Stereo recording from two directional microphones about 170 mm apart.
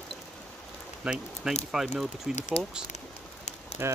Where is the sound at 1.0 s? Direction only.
5° right (ahead or behind).